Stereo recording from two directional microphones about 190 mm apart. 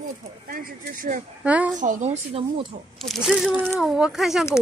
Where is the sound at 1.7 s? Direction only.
40° right (ahead or behind).